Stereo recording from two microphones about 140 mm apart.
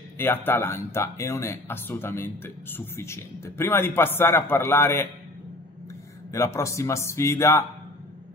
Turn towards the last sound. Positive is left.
turn(degrees=20)  # may be behind; listen again after turning